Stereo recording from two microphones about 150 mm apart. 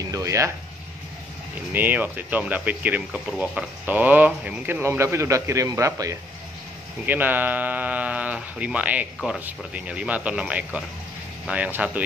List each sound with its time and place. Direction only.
0.0 s speech: 20° right (ahead or behind)
1.7 s speech: 10° right (ahead or behind)